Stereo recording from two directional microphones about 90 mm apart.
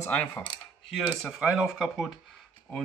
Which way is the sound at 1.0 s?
Centre (ahead or behind).